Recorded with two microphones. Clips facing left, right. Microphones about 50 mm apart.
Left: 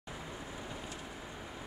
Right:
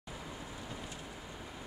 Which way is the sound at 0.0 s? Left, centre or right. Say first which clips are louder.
Left 1 dB; centre.